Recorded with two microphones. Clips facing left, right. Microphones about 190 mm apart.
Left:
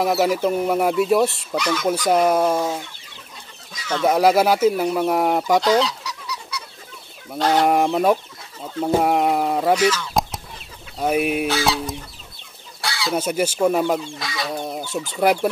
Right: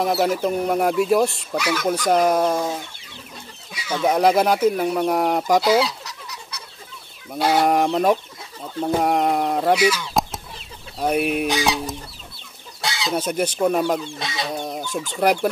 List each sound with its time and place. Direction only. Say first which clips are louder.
0.0 s speech: left 1 dB; 5° left (ahead or behind)
3.7 s bird: left 1 dB; 10° right (ahead or behind)
4.1 s speech: left 1 dB; 5° left (ahead or behind)
6.0 s chicken: left 5 dB; 50° right (ahead or behind)
7.3 s chicken: even; 10° right (ahead or behind)
7.6 s speech: left 1 dB; 5° left (ahead or behind)
9.0 s a sound: right 1 dB; 5° left (ahead or behind)
9.8 s chicken: even; 10° right (ahead or behind)
11.0 s speech: left 1 dB; centre (ahead or behind)
11.4 s chicken: even; 15° right (ahead or behind)
12.8 s chicken: even; 20° right (ahead or behind)
13.1 s speech: left 2 dB; 5° left (ahead or behind)
14.2 s chicken: even; 25° right (ahead or behind)
14.6 s speech: left 1 dB; 5° left (ahead or behind)